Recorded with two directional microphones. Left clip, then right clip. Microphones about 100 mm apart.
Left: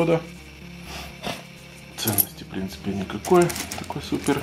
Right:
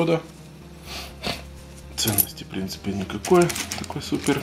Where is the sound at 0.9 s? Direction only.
20° right (ahead or behind).